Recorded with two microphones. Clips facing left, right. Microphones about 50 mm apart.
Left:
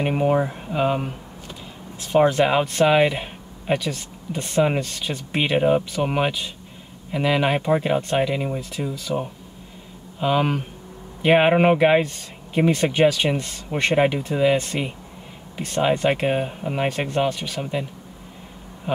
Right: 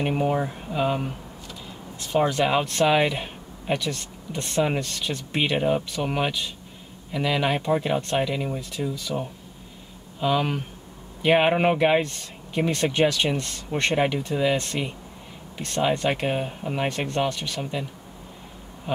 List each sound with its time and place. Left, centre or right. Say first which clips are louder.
0.0 s speech: left 4 dB; centre
2.1 s speech: left 4 dB; centre